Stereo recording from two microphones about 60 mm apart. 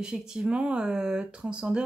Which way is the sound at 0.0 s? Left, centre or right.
Centre.